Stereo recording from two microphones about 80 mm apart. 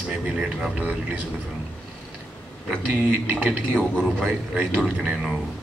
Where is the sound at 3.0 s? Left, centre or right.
Centre.